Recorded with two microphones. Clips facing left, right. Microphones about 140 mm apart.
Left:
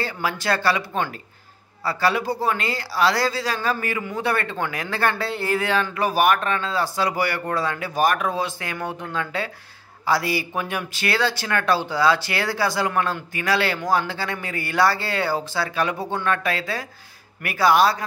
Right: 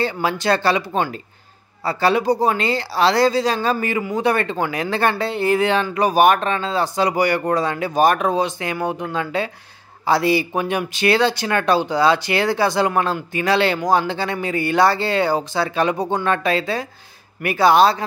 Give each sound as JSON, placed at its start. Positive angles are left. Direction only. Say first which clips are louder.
{"t": 0.0, "sound": "speech", "louder": "right 5 dB", "side_deg": -25}